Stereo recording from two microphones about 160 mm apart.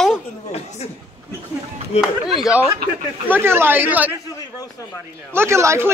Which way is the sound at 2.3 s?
5° right (ahead or behind).